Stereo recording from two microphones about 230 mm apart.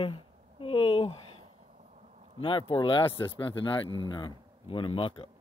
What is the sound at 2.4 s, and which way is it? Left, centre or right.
Speech, left.